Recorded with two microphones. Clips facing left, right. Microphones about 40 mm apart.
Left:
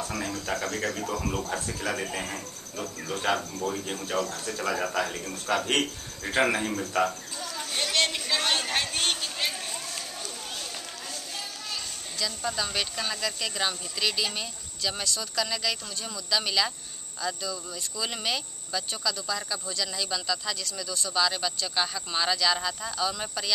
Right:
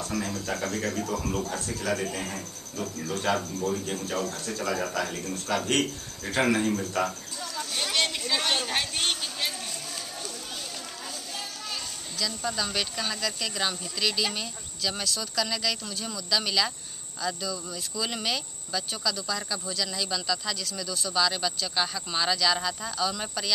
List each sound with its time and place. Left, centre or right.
0.0 s speech: centre
7.8 s a sound: centre
12.2 s speech: centre